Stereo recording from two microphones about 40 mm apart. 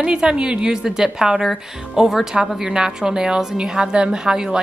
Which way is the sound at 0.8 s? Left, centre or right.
Centre.